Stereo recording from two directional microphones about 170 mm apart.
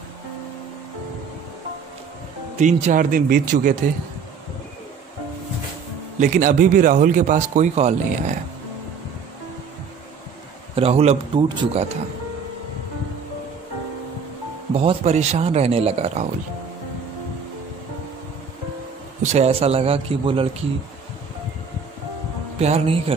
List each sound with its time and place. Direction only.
2.6 s a man's voice: 45° right (ahead or behind)
6.1 s a man's voice: 50° right (ahead or behind)
10.7 s a man's voice: 35° right (ahead or behind)
14.7 s a man's voice: 35° right (ahead or behind)
19.2 s a man's voice: 40° right (ahead or behind)
22.6 s a man's voice: 40° right (ahead or behind)